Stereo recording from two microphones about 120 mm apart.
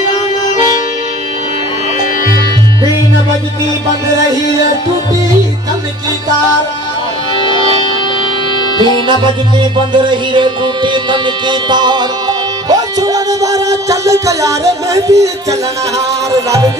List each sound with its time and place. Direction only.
8.7 s music: 40° right (ahead or behind); by 15.2 s 25° right (ahead or behind)
16.3 s music: 30° right (ahead or behind)